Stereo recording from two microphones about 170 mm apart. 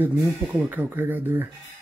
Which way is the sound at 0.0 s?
10° right (ahead or behind).